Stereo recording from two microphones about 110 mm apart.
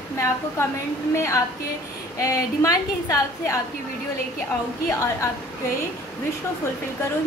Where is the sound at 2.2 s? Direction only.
30° left (ahead or behind).